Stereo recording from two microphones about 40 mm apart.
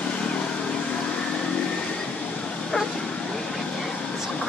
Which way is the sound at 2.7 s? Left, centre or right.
Left.